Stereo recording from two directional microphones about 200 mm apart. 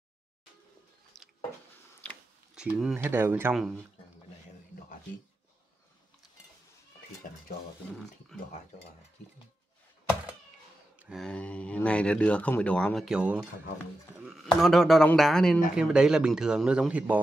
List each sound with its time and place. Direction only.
2.0 s speech: 5° right (ahead or behind)
7.2 s stir: 45° left (ahead or behind)
11.0 s speech: centre (ahead or behind)